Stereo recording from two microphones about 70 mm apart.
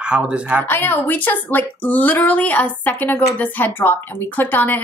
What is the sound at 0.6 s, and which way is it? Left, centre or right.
Speech, left.